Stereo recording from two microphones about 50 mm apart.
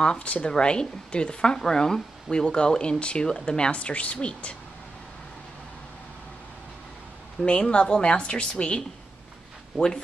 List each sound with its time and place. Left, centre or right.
0.0 s speech: left
7.4 s a woman's voice: centre